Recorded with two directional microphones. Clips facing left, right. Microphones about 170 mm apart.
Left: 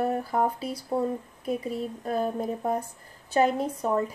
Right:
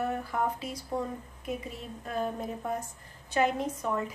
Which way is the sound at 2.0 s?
40° left (ahead or behind).